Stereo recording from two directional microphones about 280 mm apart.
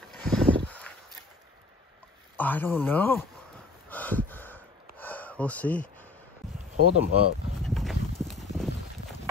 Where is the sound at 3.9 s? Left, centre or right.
Centre.